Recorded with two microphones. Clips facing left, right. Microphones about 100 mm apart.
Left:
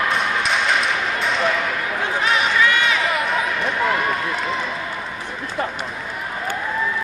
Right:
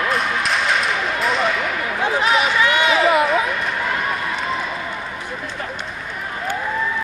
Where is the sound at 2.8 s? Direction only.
30° right (ahead or behind).